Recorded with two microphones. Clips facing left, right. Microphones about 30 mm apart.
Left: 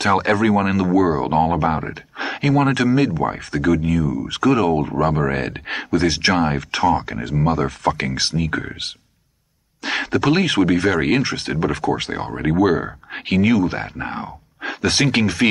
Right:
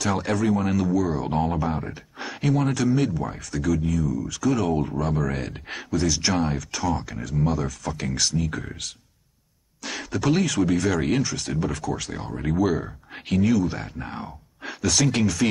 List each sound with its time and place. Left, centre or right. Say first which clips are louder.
0.1 s speech: left 7 dB; left
4.3 s speech: left 8 dB; left
4.6 s speech: left 6 dB; left
5.1 s speech: left 6 dB; left
7.3 s speech: left 5 dB; left
7.6 s speech: left 9 dB; left
13.6 s speech: left 5 dB; left